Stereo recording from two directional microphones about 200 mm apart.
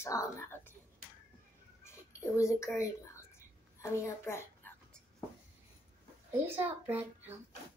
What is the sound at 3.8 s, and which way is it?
Speech, 15° left (ahead or behind).